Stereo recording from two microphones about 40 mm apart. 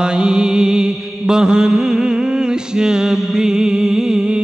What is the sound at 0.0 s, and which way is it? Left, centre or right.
Mantra, right.